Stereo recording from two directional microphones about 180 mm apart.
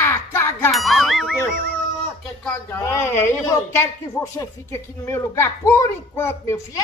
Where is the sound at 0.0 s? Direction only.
15° left (ahead or behind).